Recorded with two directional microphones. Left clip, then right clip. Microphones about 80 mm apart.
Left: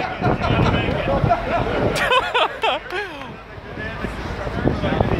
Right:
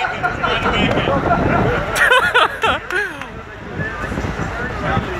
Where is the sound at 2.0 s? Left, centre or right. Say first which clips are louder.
Right 7 dB; centre.